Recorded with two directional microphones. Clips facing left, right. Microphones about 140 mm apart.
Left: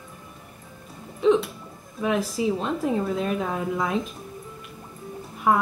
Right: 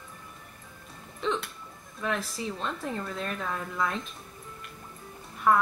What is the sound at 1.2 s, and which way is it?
A woman's voice, 5° left (ahead or behind).